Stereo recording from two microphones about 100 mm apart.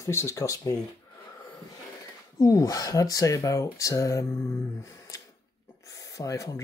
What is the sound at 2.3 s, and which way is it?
Speech, 35° left (ahead or behind).